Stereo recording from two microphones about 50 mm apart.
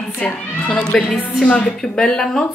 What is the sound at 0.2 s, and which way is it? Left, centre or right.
A woman's voice, left.